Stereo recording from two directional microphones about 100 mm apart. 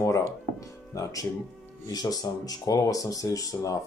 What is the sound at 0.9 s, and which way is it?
Speech, 30° left (ahead or behind).